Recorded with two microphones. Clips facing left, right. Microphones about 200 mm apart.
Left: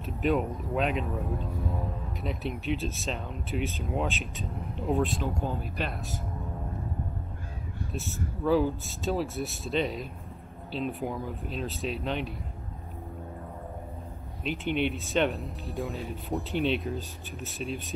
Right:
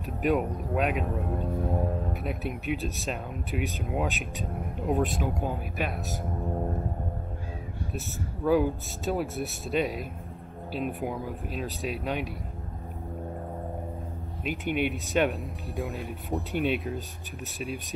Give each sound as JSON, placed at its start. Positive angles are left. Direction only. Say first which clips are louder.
{"t": 0.2, "sound": "speech", "louder": "right 1 dB", "side_deg": -5}
{"t": 1.2, "sound": "music", "louder": "right 3 dB", "side_deg": -55}
{"t": 2.2, "sound": "speech", "louder": "left 4 dB", "side_deg": 0}
{"t": 5.2, "sound": "speech", "louder": "right 1 dB", "side_deg": -10}
{"t": 8.5, "sound": "speech", "louder": "right 1 dB", "side_deg": 0}
{"t": 14.4, "sound": "speech", "louder": "even", "side_deg": -5}